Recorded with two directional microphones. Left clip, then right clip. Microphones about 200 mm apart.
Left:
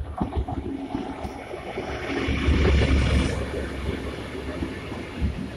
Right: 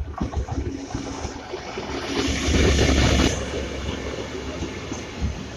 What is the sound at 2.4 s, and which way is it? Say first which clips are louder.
Vehicle: right 5 dB; 50° right (ahead or behind).